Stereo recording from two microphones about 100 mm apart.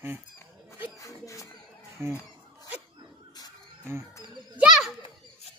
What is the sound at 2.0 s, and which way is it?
Speech, 25° right (ahead or behind).